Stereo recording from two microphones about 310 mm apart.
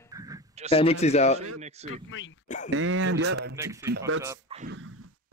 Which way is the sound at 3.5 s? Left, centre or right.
Centre.